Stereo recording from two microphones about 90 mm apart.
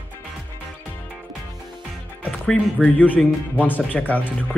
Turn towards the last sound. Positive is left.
turn(degrees=20)  # may be behind; listen again after turning